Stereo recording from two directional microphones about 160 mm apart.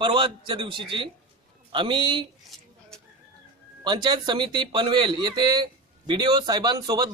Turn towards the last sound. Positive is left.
turn(degrees=-25)  # may be behind; listen again after turning